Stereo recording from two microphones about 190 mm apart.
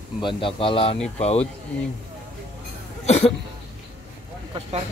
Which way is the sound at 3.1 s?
35° left (ahead or behind).